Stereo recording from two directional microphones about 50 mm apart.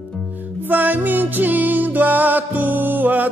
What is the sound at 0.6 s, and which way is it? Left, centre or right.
Music, right.